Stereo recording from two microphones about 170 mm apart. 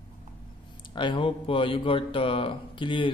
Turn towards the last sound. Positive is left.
turn(degrees=30)  # may be behind; listen again after turning